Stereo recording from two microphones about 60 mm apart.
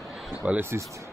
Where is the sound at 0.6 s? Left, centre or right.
Right.